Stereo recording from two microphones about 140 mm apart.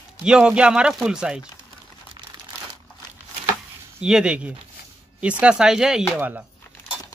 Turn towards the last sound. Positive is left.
turn(degrees=-10)  # may be behind; listen again after turning